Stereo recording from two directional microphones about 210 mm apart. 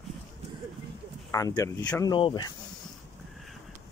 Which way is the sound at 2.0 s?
20° left (ahead or behind).